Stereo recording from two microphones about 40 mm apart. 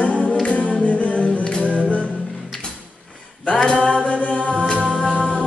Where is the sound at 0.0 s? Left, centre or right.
Left.